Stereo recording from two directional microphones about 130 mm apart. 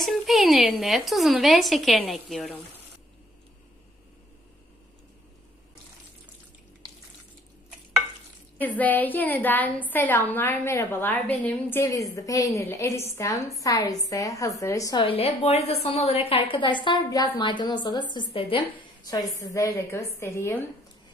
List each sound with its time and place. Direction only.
0.0 s a woman's voice: centre (ahead or behind)
8.5 s a woman's voice: 15° left (ahead or behind)
11.8 s a woman's voice: 25° left (ahead or behind)
15.0 s a woman's voice: 50° left (ahead or behind); by 18.0 s 35° left (ahead or behind)
18.1 s a woman's voice: 45° left (ahead or behind)
19.0 s a woman's voice: 25° left (ahead or behind)